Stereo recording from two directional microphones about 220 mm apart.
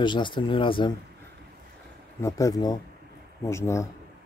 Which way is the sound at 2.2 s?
15° left (ahead or behind).